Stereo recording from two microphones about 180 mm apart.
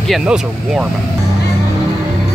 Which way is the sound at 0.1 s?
5° right (ahead or behind).